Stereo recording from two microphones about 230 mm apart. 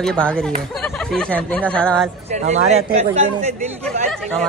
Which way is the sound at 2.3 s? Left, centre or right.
Right.